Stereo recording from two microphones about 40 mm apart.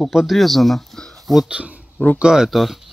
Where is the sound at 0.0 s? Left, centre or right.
Centre.